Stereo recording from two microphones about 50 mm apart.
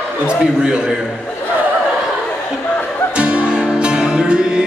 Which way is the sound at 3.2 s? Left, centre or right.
Right.